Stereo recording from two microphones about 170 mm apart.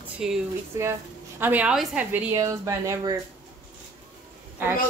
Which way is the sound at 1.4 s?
10° right (ahead or behind).